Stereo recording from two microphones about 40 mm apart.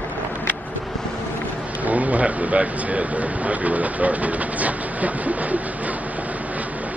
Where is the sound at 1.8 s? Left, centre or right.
Right.